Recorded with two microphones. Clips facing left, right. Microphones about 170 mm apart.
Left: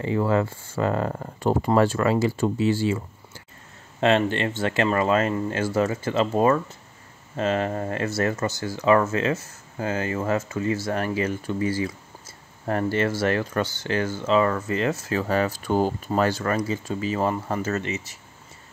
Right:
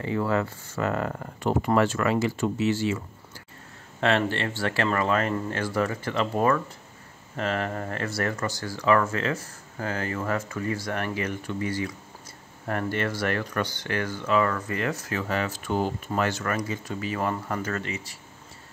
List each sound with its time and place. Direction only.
0.0 s speech: 25° left (ahead or behind)
4.0 s speech: 20° left (ahead or behind)